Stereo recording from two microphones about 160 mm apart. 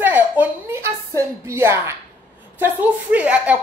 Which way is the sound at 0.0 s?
10° right (ahead or behind).